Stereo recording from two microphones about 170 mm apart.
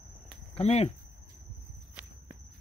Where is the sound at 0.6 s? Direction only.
40° left (ahead or behind).